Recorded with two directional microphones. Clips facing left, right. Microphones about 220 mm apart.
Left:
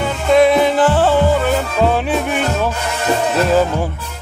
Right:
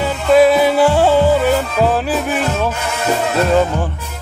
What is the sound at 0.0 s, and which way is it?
Music, 5° right (ahead or behind).